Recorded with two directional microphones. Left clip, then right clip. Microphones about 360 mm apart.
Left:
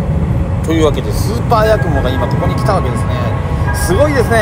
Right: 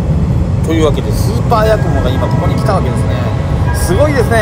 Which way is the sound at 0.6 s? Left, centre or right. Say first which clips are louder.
Even; centre.